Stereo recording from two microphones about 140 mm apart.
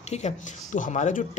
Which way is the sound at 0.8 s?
60° left (ahead or behind).